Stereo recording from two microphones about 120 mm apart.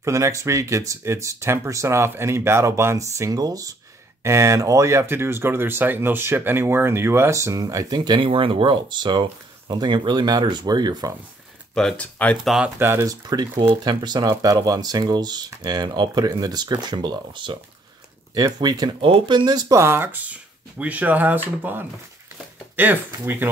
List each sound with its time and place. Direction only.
0.0 s speech: 25° right (ahead or behind)
11.7 s speech: 5° left (ahead or behind)
12.4 s speech: 5° right (ahead or behind)
12.7 s speech: 20° right (ahead or behind)
13.1 s speech: 35° right (ahead or behind)
18.9 s speech: 50° right (ahead or behind)
19.8 s speech: 20° right (ahead or behind)